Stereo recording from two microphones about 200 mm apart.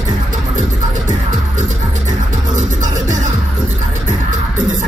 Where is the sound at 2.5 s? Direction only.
40° right (ahead or behind).